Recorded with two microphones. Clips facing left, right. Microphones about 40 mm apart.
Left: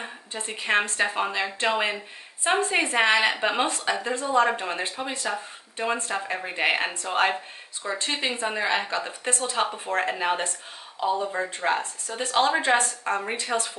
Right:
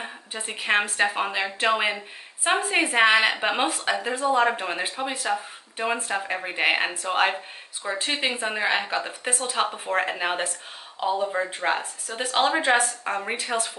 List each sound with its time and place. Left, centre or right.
0.0 s a woman's voice: centre